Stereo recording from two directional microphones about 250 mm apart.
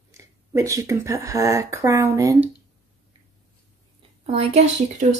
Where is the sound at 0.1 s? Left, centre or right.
Centre.